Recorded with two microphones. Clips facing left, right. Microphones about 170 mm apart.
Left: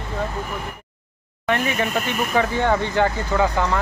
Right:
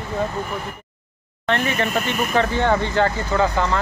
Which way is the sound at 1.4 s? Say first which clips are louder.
Even; 10° left (ahead or behind).